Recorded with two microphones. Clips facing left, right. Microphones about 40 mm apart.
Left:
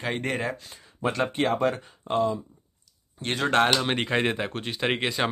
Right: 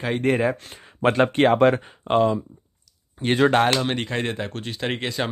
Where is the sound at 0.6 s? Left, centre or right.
Right.